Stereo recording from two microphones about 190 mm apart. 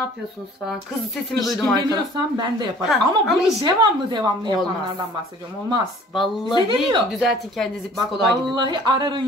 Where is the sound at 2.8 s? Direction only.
Centre (ahead or behind).